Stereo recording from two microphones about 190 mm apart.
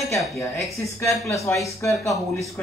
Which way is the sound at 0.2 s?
Centre (ahead or behind).